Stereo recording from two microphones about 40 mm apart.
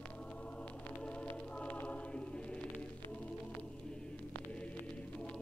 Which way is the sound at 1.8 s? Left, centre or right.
Left.